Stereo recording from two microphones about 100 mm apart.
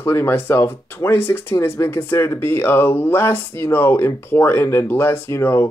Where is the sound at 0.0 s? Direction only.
25° left (ahead or behind).